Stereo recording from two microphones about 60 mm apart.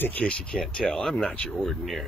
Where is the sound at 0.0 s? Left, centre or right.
Left.